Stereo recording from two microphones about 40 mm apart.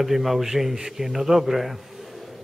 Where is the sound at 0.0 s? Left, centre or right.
Centre.